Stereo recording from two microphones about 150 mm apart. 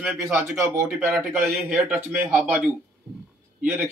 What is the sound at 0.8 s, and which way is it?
A man's voice, 5° right (ahead or behind).